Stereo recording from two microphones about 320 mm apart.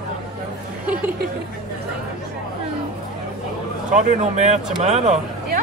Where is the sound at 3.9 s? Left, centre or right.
Right.